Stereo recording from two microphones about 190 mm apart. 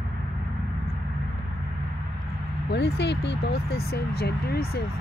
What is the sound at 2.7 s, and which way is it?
Speech, 60° left (ahead or behind).